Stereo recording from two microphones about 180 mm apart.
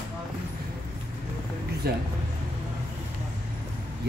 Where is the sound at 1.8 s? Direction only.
60° right (ahead or behind).